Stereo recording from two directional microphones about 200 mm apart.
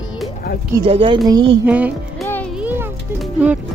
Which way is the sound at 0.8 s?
30° right (ahead or behind).